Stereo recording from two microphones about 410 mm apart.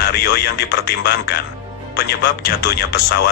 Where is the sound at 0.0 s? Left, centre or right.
Left.